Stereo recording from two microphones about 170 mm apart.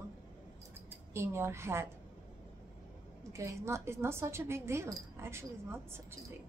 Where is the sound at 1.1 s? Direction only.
15° right (ahead or behind).